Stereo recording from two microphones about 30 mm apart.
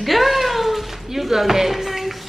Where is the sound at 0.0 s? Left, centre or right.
Centre.